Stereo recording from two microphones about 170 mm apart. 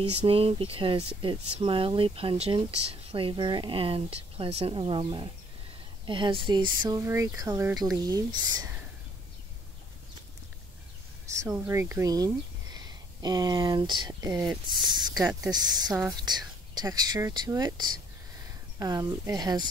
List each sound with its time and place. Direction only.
0.0 s speech: 35° right (ahead or behind)
11.2 s speech: 15° right (ahead or behind)